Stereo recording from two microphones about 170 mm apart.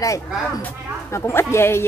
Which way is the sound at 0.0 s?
20° left (ahead or behind).